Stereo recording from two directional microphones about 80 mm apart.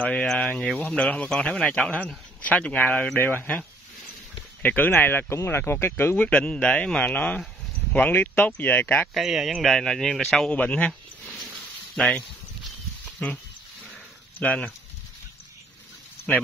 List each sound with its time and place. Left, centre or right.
0.0 s speech: centre
9.1 s speech: centre
10.5 s speech: centre
11.9 s speech: centre
14.4 s speech: centre